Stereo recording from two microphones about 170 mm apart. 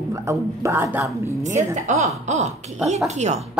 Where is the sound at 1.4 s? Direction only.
45° right (ahead or behind).